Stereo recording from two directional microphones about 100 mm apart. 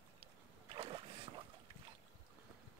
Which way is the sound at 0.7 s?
65° right (ahead or behind).